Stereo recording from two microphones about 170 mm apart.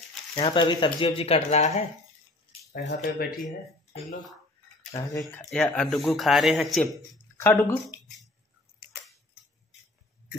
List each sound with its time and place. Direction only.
0.4 s speech: 30° left (ahead or behind)
2.7 s speech: 90° left
3.2 s speech: 55° left (ahead or behind)
4.9 s speech: 15° left (ahead or behind)
5.4 s speech: 5° left (ahead or behind)
7.3 s speech: 15° left (ahead or behind)